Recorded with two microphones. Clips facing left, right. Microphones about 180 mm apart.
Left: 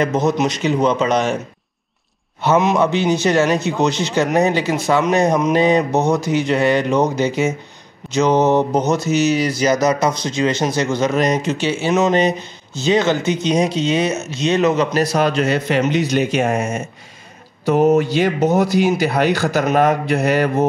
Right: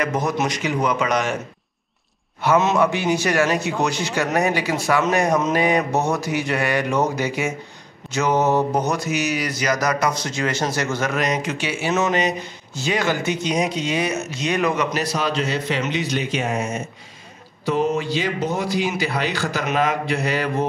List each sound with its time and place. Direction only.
0.0 s speech: 25° left (ahead or behind)
2.4 s speech: 15° left (ahead or behind)
11.1 s speech: 30° left (ahead or behind)
15.0 s speech: 50° left (ahead or behind)